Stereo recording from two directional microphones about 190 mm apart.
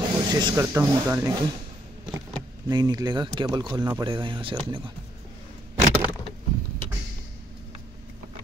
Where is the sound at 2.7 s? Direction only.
20° right (ahead or behind).